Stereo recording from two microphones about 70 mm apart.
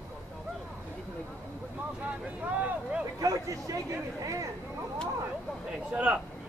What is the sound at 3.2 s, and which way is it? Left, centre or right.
Speech, right.